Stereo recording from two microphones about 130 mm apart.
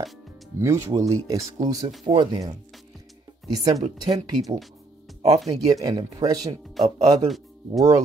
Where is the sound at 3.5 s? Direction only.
30° right (ahead or behind).